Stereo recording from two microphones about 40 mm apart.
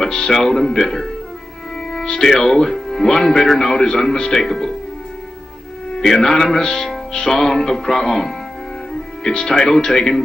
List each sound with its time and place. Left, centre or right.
0.0 s speech: centre
5.9 s speech: centre
6.6 s music: centre
7.2 s speech: centre
9.5 s speech: centre